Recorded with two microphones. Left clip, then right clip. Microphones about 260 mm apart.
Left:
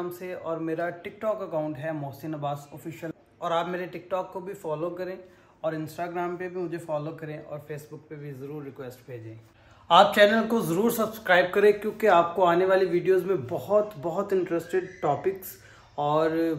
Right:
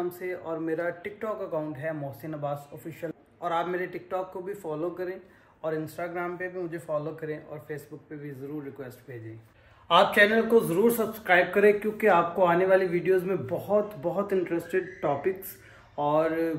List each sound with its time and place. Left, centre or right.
0.2 s a man's voice: centre
10.3 s speech: centre
12.7 s a man's voice: left
13.1 s speech: centre